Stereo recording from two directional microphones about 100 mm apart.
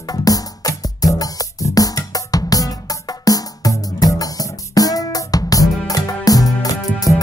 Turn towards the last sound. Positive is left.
turn(degrees=35)  # may be behind; listen again after turning